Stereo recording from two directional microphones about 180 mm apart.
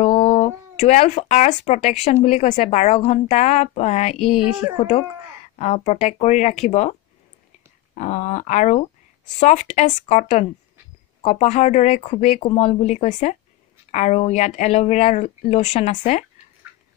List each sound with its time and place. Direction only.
0.0 s speech: 35° left (ahead or behind)
4.2 s a woman's voice: centre (ahead or behind)
4.7 s speech: 40° left (ahead or behind)